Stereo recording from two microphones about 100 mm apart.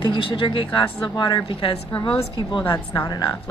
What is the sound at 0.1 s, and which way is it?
Speech, 55° left (ahead or behind).